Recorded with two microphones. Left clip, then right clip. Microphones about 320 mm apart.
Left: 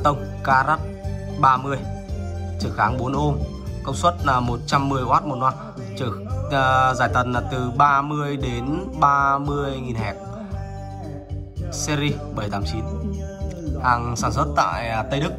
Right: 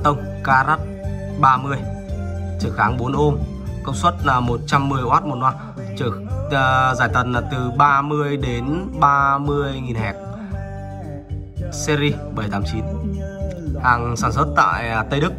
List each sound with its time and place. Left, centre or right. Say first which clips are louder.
0.0 s speech: right 2 dB; centre
11.8 s speech: right 5 dB; centre
13.8 s speech: right 3 dB; centre